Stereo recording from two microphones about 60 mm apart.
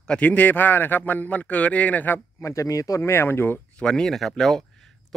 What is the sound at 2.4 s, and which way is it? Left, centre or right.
Speech, left.